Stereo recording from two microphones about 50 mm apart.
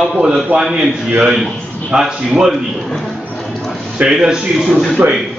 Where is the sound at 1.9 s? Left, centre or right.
Centre.